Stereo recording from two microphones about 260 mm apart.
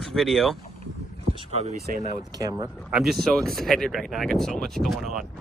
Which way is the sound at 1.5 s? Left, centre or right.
Right.